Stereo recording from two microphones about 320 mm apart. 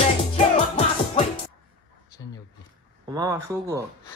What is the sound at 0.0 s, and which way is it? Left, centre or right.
Music, centre.